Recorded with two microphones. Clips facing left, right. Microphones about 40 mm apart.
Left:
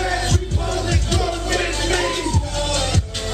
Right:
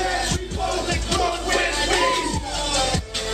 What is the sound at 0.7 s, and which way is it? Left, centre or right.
Music, centre.